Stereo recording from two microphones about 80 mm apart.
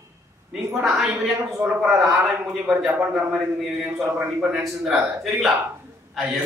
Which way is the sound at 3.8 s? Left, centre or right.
Centre.